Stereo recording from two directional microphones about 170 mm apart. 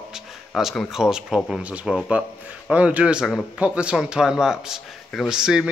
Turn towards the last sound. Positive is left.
turn(degrees=-5)  # may be behind; listen again after turning